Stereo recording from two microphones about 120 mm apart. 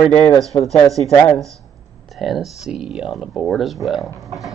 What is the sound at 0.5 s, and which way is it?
Speech, 45° left (ahead or behind).